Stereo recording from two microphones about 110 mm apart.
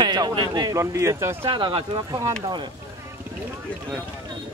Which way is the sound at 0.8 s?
25° right (ahead or behind).